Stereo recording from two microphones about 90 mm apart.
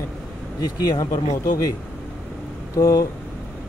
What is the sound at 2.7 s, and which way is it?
Speech, 40° left (ahead or behind).